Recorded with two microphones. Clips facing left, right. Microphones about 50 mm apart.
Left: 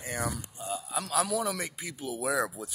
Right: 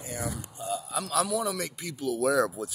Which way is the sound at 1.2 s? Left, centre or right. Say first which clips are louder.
Right 1 dB; left.